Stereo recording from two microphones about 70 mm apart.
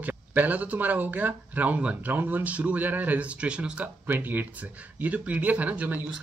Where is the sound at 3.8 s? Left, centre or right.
Right.